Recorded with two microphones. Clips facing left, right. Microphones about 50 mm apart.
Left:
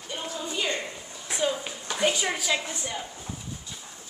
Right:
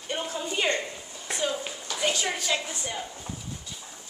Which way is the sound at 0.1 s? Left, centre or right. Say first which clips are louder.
Right 3 dB; right.